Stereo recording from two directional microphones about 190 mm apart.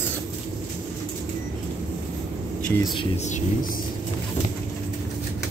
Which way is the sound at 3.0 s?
35° left (ahead or behind).